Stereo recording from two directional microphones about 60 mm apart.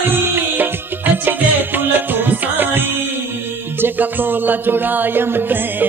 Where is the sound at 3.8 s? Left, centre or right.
Right.